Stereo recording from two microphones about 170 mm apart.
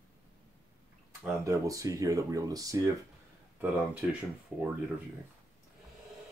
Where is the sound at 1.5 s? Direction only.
20° right (ahead or behind).